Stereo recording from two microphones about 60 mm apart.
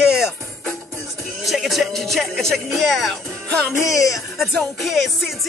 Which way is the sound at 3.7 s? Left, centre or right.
Left.